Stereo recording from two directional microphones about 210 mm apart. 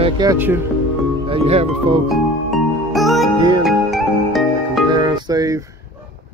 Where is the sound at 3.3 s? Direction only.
20° right (ahead or behind).